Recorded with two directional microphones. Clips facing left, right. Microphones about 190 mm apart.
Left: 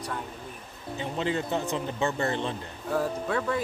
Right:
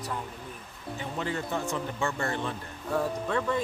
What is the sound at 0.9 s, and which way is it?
Speech, 20° left (ahead or behind).